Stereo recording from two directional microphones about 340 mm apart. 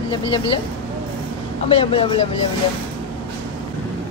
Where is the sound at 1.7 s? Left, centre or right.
Centre.